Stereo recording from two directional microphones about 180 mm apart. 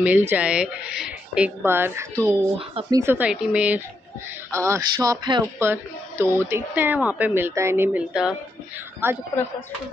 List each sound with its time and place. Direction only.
0.0 s speech: 10° right (ahead or behind)